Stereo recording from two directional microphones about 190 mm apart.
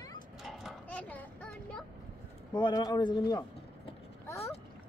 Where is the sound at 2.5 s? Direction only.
20° left (ahead or behind).